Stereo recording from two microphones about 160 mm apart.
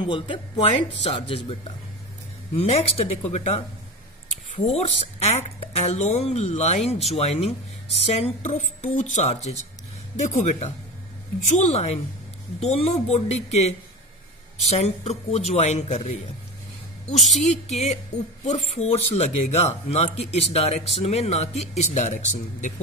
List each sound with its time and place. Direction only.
0.0 s speech: 30° left (ahead or behind)
4.7 s speech: 45° left (ahead or behind)
17.4 s speech: 45° left (ahead or behind)